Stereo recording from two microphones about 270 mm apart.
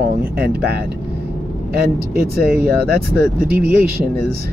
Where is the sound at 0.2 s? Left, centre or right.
Right.